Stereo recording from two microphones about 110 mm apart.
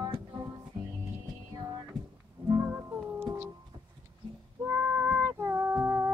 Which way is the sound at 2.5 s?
20° right (ahead or behind).